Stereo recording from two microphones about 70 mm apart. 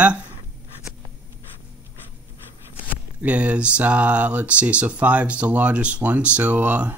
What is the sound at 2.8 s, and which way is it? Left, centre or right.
Speech, right.